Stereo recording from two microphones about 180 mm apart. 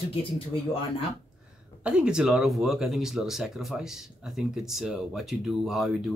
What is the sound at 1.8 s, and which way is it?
Speech, 5° right (ahead or behind).